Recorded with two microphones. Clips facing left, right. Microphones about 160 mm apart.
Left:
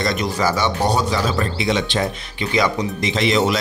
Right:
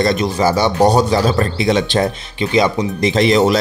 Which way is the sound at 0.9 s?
40° right (ahead or behind).